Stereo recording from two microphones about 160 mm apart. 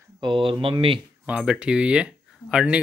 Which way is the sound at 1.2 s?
5° right (ahead or behind).